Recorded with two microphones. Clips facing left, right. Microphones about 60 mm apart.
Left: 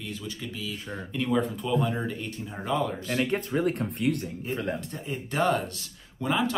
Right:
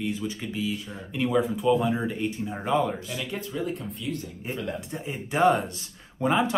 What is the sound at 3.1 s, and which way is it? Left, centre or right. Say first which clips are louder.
Speech: left 6 dB; left.